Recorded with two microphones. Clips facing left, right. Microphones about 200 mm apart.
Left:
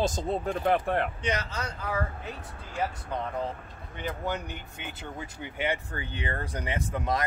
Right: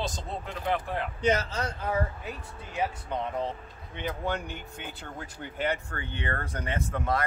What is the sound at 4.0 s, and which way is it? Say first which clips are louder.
Speech: right 1 dB; centre (ahead or behind).